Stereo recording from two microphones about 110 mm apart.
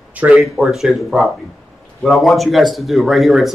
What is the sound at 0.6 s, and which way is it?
Speech, centre (ahead or behind).